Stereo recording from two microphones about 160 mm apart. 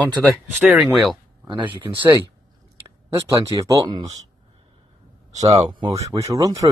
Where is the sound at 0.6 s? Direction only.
Centre (ahead or behind).